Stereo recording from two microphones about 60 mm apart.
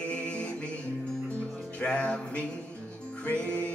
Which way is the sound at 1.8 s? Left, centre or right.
Centre.